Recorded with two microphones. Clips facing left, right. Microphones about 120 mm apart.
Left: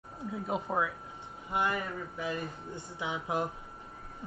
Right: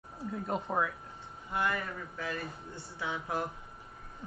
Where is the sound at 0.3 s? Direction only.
5° left (ahead or behind).